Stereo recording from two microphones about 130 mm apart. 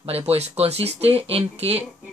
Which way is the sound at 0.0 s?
50° right (ahead or behind).